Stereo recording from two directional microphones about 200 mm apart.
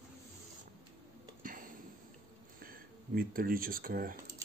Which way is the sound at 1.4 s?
45° right (ahead or behind).